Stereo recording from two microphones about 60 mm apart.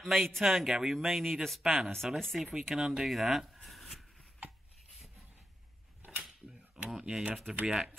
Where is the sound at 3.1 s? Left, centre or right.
Centre.